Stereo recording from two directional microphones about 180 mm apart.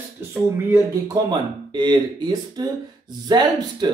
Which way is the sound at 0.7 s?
20° right (ahead or behind).